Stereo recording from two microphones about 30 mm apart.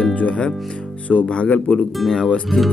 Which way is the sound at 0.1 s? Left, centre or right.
Left.